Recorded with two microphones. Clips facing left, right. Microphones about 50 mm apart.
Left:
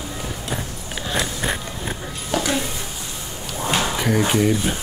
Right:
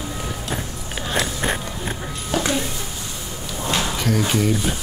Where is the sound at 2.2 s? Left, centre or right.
Centre.